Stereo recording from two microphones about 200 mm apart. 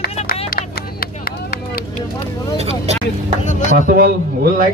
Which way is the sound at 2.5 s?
30° right (ahead or behind).